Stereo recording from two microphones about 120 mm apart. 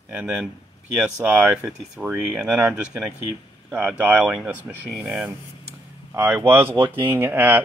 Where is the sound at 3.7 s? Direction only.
15° right (ahead or behind).